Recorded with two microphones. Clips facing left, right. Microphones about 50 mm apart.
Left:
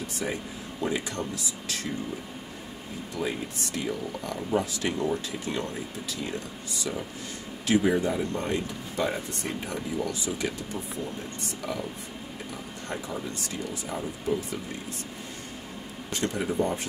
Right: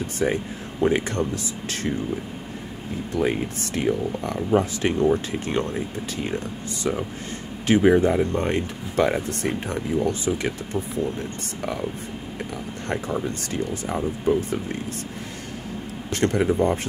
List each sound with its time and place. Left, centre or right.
0.2 s speech: right
3.2 s speech: right
6.8 s speech: right
9.9 s speech: right
13.9 s speech: right
16.1 s speech: right
16.4 s speech: right